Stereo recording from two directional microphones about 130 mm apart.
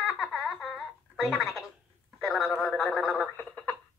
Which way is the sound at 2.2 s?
Centre (ahead or behind).